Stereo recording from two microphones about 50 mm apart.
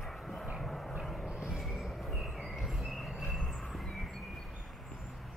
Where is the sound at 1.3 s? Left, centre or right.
Centre.